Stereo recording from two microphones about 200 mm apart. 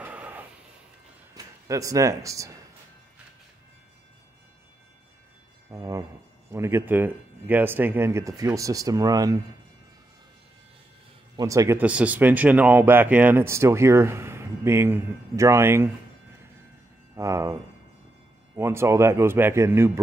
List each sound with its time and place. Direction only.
0.0 s a sound: 10° right (ahead or behind)
1.3 s speech: 15° right (ahead or behind)
5.7 s speech: 15° right (ahead or behind)
11.3 s speech: 15° right (ahead or behind)
17.1 s speech: 15° right (ahead or behind)
18.6 s speech: 15° right (ahead or behind)